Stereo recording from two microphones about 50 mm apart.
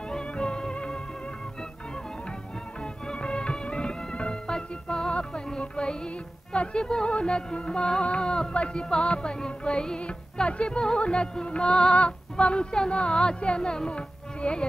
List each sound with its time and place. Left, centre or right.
0.1 s music: centre
2.8 s music: centre